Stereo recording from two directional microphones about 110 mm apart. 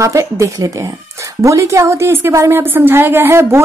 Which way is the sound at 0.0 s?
25° right (ahead or behind).